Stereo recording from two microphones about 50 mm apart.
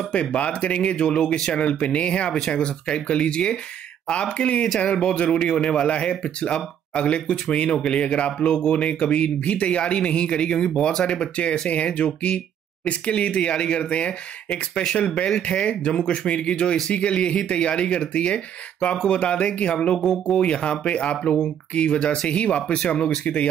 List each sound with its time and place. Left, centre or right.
0.1 s speech: left
14.5 s speech: centre